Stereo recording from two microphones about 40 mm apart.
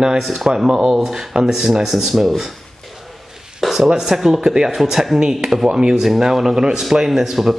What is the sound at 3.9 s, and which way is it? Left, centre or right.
A man's voice, centre.